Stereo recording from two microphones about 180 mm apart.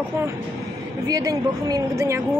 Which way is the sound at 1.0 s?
20° right (ahead or behind).